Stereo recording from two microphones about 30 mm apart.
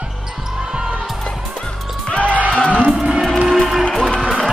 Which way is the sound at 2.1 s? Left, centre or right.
Left.